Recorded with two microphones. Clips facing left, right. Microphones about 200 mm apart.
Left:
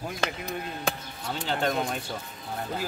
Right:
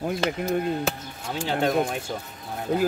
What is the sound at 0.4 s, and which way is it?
Speech, 50° right (ahead or behind).